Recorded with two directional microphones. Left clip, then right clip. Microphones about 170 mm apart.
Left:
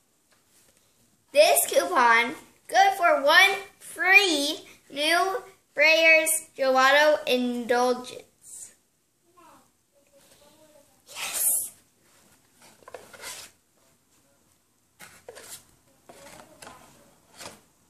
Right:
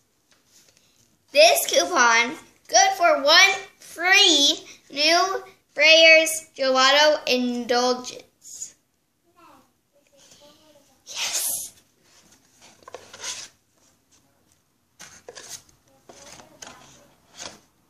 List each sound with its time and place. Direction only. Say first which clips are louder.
1.3 s a child's voice: right 3 dB; 15° left (ahead or behind)
12.5 s patter: right 2 dB; 5° right (ahead or behind)